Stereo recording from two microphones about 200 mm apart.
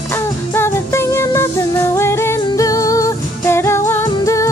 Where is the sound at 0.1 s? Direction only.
10° left (ahead or behind).